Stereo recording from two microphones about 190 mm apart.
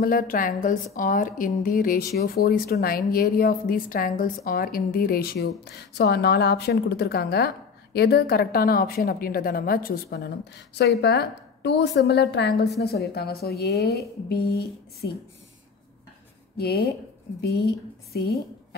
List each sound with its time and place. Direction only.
0.0 s a woman's voice: 50° left (ahead or behind)
16.5 s a woman's voice: 55° left (ahead or behind)